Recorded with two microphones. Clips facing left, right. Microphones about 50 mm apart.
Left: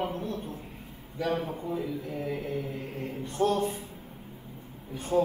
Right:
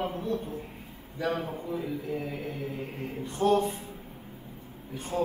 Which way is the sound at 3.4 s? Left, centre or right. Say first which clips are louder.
Right 2 dB; left.